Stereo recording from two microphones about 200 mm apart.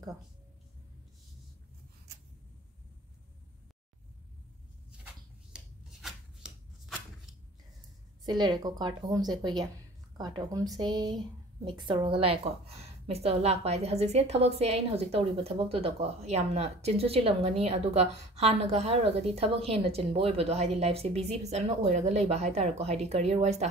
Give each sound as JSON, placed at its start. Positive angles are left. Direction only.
{"t": 4.9, "sound": "shuffling cards", "side_deg": -5}
{"t": 8.4, "sound": "a woman's voice", "side_deg": -20}